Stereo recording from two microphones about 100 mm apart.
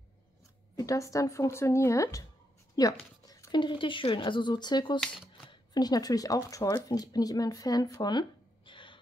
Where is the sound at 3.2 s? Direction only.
35° left (ahead or behind).